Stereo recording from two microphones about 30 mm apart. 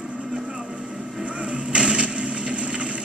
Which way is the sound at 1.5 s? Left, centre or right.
Right.